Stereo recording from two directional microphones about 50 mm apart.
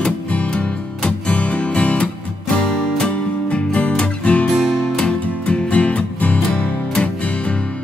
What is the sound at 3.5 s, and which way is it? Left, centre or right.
Music, left.